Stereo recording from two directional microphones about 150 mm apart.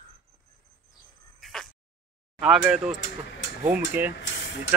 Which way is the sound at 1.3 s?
Centre (ahead or behind).